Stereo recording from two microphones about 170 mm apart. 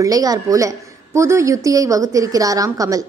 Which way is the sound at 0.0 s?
20° right (ahead or behind).